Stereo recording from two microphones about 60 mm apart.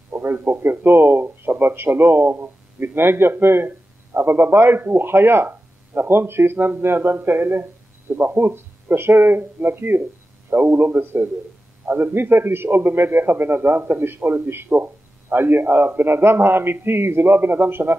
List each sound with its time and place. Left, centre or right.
0.1 s a man's voice: right